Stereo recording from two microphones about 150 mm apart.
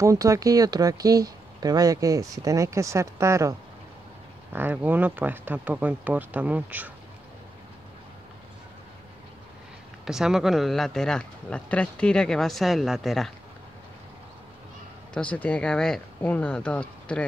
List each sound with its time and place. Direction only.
0.0 s speech: 20° right (ahead or behind)
10.0 s speech: 5° right (ahead or behind)
15.1 s speech: 10° left (ahead or behind)